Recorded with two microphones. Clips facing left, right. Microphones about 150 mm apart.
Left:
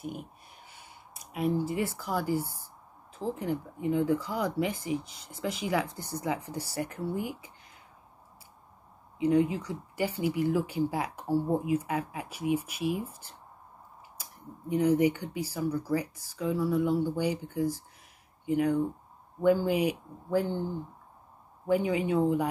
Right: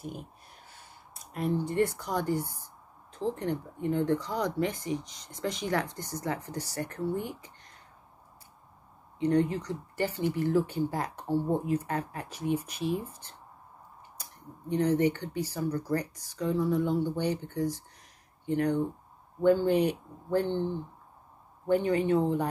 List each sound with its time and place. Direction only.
1.3 s speech: 5° left (ahead or behind)
9.2 s speech: 5° left (ahead or behind)
14.7 s speech: 10° left (ahead or behind)